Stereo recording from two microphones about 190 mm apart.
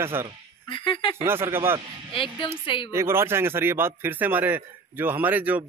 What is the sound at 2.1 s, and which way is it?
Speech, 25° left (ahead or behind).